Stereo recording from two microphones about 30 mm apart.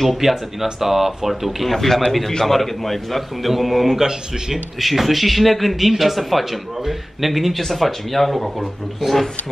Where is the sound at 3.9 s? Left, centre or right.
Right.